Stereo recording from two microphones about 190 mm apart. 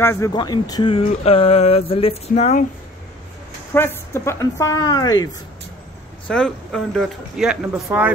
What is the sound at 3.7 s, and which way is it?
A woman's voice, 10° left (ahead or behind).